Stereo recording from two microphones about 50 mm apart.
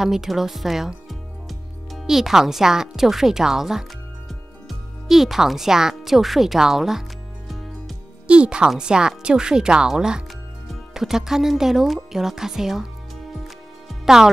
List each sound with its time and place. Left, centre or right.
0.0 s music: centre
2.0 s speech: centre
4.3 s music: centre
8.3 s speech: right
13.8 s music: centre